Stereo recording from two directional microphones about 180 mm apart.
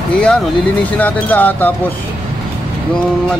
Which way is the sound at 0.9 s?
10° left (ahead or behind).